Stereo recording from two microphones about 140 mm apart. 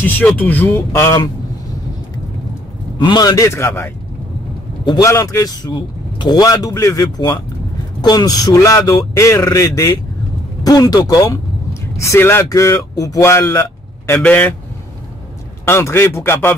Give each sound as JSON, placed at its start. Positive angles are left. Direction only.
{"t": 0.0, "sound": "speech", "side_deg": 10}
{"t": 3.0, "sound": "speech", "side_deg": 30}
{"t": 15.6, "sound": "speech", "side_deg": 15}